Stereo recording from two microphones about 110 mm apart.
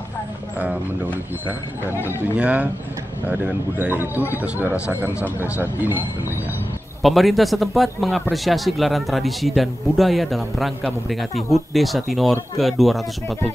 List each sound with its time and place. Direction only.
2.3 s speech: 10° right (ahead or behind)
3.8 s speech: 15° right (ahead or behind)
7.0 s a man's voice: centre (ahead or behind)